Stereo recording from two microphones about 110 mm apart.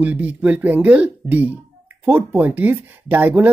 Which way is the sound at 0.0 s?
15° right (ahead or behind).